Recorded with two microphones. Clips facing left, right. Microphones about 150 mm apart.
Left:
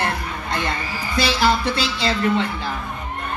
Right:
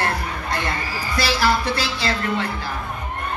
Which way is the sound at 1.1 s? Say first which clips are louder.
Left 1 dB; 20° left (ahead or behind).